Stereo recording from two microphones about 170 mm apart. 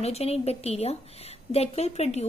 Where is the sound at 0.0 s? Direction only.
40° left (ahead or behind).